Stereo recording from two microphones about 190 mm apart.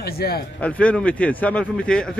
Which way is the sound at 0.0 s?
55° left (ahead or behind).